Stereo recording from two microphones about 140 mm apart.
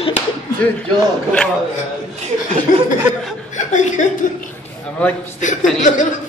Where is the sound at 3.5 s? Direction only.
60° left (ahead or behind).